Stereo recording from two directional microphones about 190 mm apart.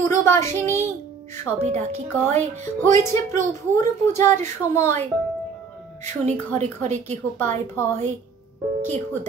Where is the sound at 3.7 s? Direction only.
15° left (ahead or behind).